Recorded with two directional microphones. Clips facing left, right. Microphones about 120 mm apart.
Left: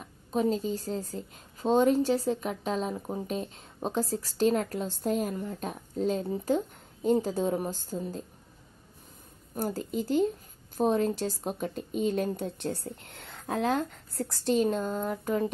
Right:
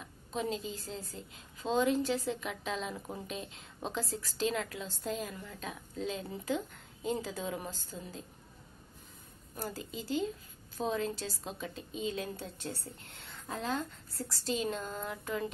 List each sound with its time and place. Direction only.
0.0 s a woman's voice: 40° left (ahead or behind)
3.0 s speech: 30° left (ahead or behind)
3.3 s a woman's voice: 45° left (ahead or behind)
9.6 s speech: 50° left (ahead or behind)
14.2 s a woman's voice: 50° left (ahead or behind)